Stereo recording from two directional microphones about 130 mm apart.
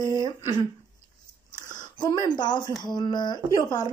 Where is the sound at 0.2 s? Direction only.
30° left (ahead or behind).